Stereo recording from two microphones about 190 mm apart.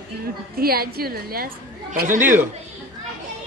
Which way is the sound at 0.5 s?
50° right (ahead or behind).